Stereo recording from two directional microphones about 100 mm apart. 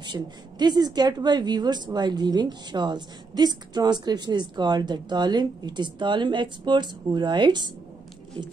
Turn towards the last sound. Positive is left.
turn(degrees=-50)  # may be behind; listen again after turning